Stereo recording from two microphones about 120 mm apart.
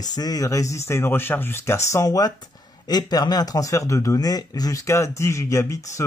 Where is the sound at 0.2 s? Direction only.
30° left (ahead or behind).